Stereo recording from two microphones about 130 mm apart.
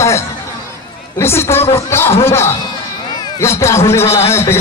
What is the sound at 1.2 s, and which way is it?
Speech, 20° left (ahead or behind).